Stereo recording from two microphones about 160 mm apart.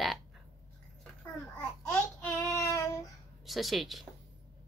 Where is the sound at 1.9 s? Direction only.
15° left (ahead or behind).